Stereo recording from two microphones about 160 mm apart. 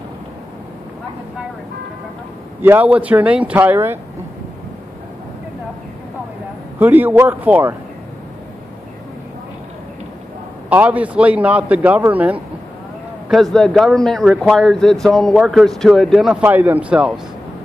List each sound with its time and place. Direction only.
2.6 s a man's voice: 10° right (ahead or behind)
6.8 s a man's voice: 10° right (ahead or behind)
10.7 s a man's voice: 10° right (ahead or behind)
13.3 s a man's voice: centre (ahead or behind)